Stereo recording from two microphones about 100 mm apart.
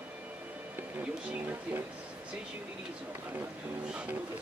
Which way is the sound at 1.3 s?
15° right (ahead or behind).